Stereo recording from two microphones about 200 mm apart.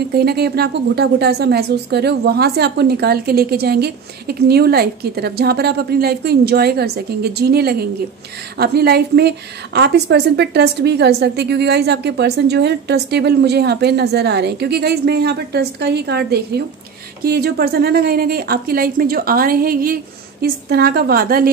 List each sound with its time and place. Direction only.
0.1 s a woman's voice: 55° right (ahead or behind)